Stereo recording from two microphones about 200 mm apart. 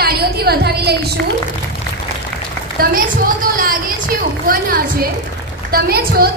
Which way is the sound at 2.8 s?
45° right (ahead or behind).